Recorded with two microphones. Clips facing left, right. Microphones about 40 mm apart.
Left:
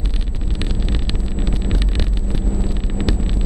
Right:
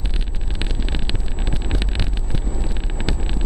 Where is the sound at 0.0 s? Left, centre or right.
Centre.